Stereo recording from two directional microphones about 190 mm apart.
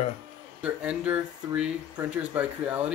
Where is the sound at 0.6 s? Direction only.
5° right (ahead or behind).